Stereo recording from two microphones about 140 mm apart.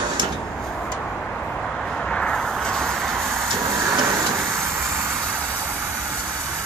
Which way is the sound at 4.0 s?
20° right (ahead or behind).